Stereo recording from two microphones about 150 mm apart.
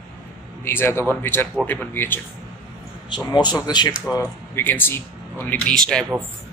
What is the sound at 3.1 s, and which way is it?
Speech, 25° left (ahead or behind).